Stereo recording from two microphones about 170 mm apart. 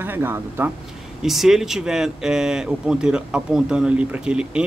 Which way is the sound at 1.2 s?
Centre (ahead or behind).